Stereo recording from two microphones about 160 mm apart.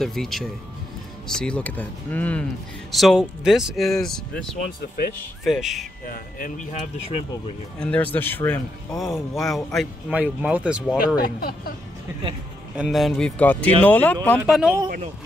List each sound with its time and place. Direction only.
0.0 s speech: centre (ahead or behind)
5.4 s speech: centre (ahead or behind)
6.0 s speech: 55° left (ahead or behind)
7.8 s speech: 10° left (ahead or behind)
8.9 s speech: centre (ahead or behind)
11.2 s speech: 65° left (ahead or behind)
12.7 s speech: centre (ahead or behind)
14.4 s speech: 5° right (ahead or behind)